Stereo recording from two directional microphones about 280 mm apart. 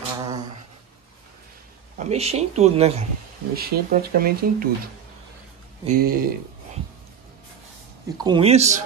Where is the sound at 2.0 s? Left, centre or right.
Right.